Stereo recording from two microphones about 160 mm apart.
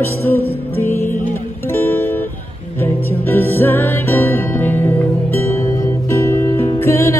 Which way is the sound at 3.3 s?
15° left (ahead or behind).